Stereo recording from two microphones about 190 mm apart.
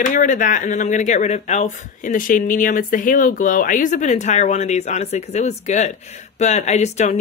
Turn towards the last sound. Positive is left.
turn(degrees=35)  # may be behind; listen again after turning